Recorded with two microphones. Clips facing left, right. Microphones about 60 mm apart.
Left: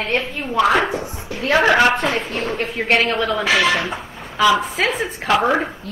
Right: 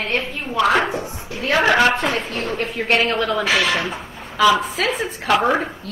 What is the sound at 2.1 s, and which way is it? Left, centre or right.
Speech, left.